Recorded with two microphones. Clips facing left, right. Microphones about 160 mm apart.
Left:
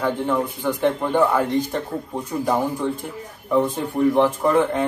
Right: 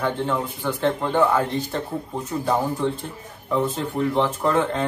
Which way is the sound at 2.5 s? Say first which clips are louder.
Even; 10° left (ahead or behind).